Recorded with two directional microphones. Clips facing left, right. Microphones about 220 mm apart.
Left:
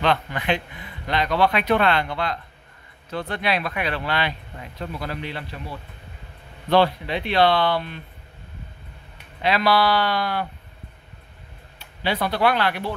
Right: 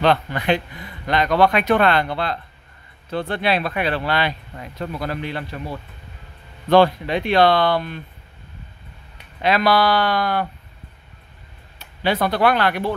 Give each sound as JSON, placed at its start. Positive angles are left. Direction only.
{"t": 0.0, "sound": "speech", "side_deg": -40}
{"t": 6.7, "sound": "speech", "side_deg": -45}
{"t": 9.4, "sound": "speech", "side_deg": -50}
{"t": 12.0, "sound": "speech", "side_deg": -50}